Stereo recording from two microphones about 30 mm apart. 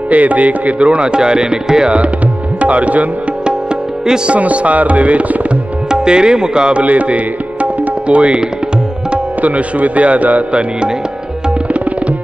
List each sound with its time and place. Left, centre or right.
0.1 s a man's voice: right
0.7 s music: right
2.6 s music: right
4.4 s music: right
5.9 s tabla: right
6.8 s speech: right
9.4 s a man's voice: right